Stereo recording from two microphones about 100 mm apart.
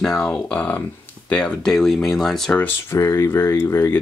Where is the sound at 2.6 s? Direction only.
30° left (ahead or behind).